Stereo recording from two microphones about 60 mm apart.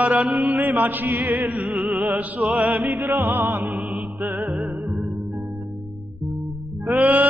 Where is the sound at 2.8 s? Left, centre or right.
Right.